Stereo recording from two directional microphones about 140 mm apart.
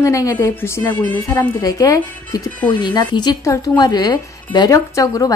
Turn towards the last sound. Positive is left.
turn(degrees=25)  # may be behind; listen again after turning